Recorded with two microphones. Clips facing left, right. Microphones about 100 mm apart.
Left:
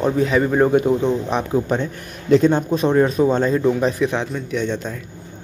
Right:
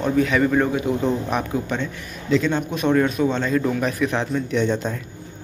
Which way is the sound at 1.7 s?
40° left (ahead or behind).